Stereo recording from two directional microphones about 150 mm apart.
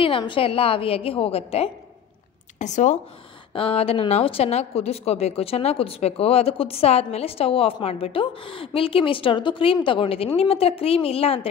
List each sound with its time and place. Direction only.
0.0 s a woman's voice: 35° left (ahead or behind)
2.6 s speech: 55° left (ahead or behind)
3.5 s a woman's voice: 40° left (ahead or behind)